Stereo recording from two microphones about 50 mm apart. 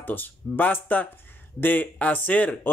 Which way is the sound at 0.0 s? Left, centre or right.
Left.